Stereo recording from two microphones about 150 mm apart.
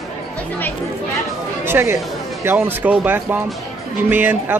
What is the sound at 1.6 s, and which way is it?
Speech, 15° right (ahead or behind).